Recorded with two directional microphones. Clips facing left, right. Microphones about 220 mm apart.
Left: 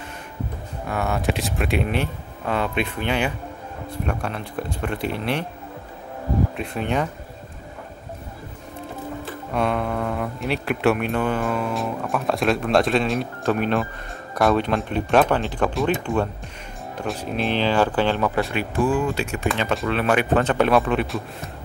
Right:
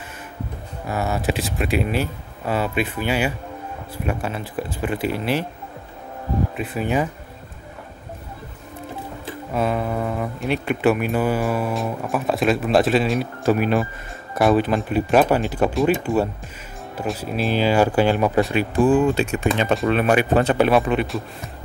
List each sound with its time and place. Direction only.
0.8 s speech: 5° right (ahead or behind)
6.5 s speech: 5° right (ahead or behind)
9.5 s speech: 5° right (ahead or behind)